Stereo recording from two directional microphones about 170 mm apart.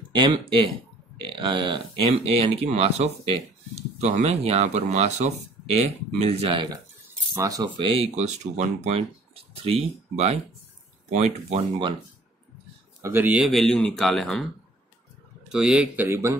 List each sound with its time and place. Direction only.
0.1 s speech: 30° right (ahead or behind)
13.0 s speech: 10° right (ahead or behind)
15.5 s speech: 5° right (ahead or behind)